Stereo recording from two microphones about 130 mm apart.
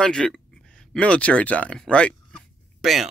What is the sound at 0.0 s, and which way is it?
Speech, 5° left (ahead or behind).